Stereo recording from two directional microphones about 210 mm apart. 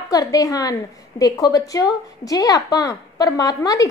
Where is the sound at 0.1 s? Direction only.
15° left (ahead or behind).